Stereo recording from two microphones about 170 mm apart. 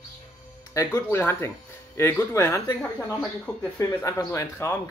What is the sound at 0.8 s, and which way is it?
Speech, 15° left (ahead or behind).